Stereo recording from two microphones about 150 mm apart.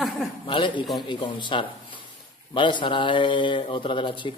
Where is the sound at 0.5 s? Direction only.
35° left (ahead or behind).